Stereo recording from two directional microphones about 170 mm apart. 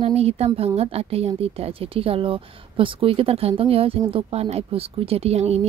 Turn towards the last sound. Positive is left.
turn(degrees=-40)  # may be behind; listen again after turning